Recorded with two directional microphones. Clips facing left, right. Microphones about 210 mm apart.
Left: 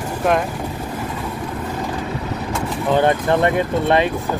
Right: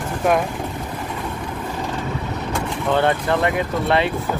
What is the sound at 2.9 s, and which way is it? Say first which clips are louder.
Speech: left 3 dB; 20° left (ahead or behind).